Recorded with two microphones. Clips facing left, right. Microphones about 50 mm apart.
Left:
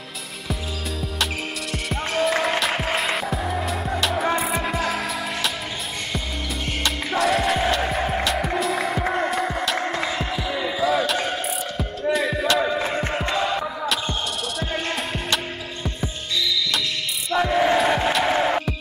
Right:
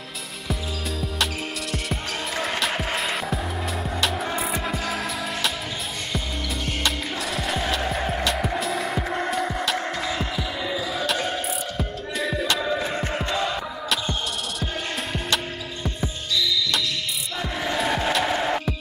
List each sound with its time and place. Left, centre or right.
1.2 s music: centre
2.7 s music: centre
3.0 s music: centre
6.8 s music: centre
10.0 s basketball bounce: centre
11.7 s music: centre
12.5 s music: left
15.1 s hum: centre
17.5 s music: left
17.7 s crowd: centre
18.3 s music: centre